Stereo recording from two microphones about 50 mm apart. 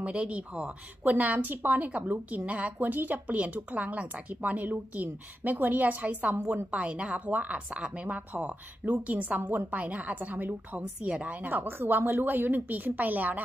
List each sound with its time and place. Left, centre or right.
0.0 s a woman's voice: right
10.8 s a woman's voice: right
11.4 s speech: right
12.0 s speech: right